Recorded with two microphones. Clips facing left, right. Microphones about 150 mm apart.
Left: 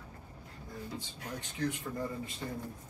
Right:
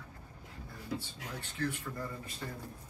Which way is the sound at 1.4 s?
15° left (ahead or behind).